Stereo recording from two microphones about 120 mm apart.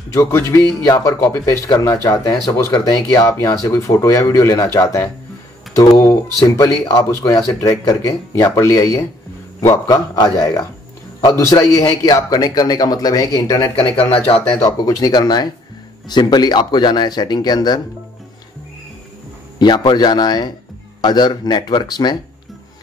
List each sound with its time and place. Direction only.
0.1 s speech: 25° left (ahead or behind)
6.4 s a man's voice: 25° left (ahead or behind)
11.1 s a man's voice: 35° left (ahead or behind)
13.9 s speech: 50° left (ahead or behind)
14.5 s a man's voice: 30° left (ahead or behind)
19.6 s a man's voice: 40° left (ahead or behind)